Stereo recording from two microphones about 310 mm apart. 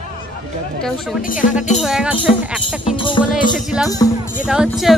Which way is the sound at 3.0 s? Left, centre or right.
Centre.